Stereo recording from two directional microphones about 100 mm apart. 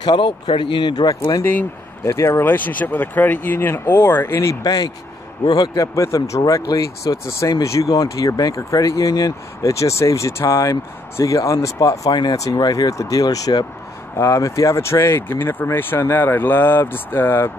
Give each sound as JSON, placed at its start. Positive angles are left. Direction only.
{"t": 0.0, "sound": "speech", "side_deg": 55}
{"t": 1.4, "sound": "speech", "side_deg": 20}